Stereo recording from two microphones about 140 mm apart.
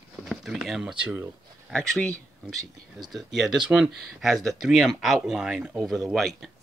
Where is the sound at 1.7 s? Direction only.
5° left (ahead or behind).